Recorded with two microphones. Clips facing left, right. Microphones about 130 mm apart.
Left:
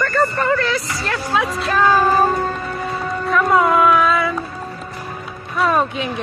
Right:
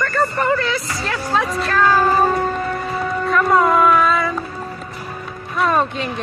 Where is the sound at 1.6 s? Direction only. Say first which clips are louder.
Left 1 dB; 15° left (ahead or behind).